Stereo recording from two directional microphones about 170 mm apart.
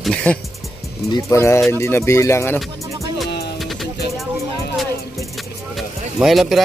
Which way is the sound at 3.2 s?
75° left (ahead or behind).